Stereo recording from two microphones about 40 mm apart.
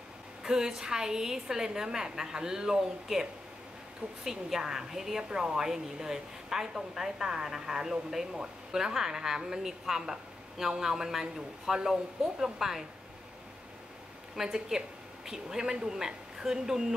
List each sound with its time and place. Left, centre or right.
0.4 s a woman's voice: centre
14.3 s a woman's voice: centre